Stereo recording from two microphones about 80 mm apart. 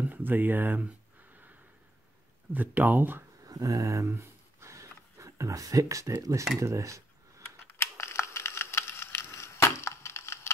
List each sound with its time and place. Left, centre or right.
0.1 s speech: right
2.5 s speech: right
3.4 s speech: right
4.1 s a sound: right
7.6 s crushing: left